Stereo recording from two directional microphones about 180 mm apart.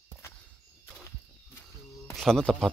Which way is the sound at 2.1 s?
Centre (ahead or behind).